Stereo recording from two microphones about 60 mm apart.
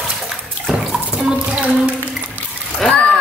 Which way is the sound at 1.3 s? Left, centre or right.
Centre.